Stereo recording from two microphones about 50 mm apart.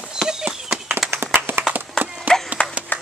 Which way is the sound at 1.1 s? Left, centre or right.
Right.